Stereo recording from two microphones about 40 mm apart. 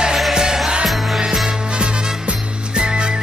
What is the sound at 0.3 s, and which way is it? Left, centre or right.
Music, centre.